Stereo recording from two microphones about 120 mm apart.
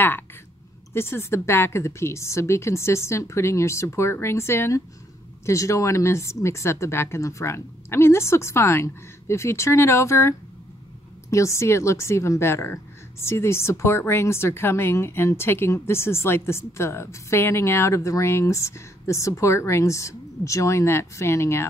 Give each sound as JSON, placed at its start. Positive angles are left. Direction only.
{"t": 0.9, "sound": "a woman's voice", "side_deg": 20}